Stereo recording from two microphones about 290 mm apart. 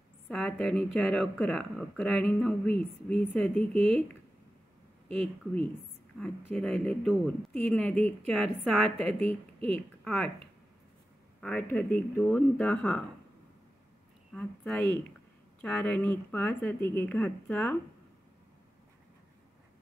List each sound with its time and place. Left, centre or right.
0.3 s speech: centre
6.5 s speech: centre
8.9 s speech: right
10.0 s speech: centre
11.7 s speech: centre
14.3 s speech: centre